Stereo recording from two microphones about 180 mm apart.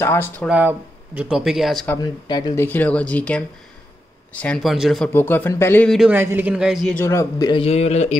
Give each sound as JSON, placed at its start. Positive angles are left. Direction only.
{"t": 0.0, "sound": "speech", "side_deg": 15}
{"t": 0.5, "sound": "speech", "side_deg": -10}
{"t": 2.0, "sound": "speech", "side_deg": 25}
{"t": 5.1, "sound": "speech", "side_deg": 10}
{"t": 5.9, "sound": "speech", "side_deg": -5}
{"t": 7.0, "sound": "speech", "side_deg": 15}
{"t": 7.6, "sound": "speech", "side_deg": 35}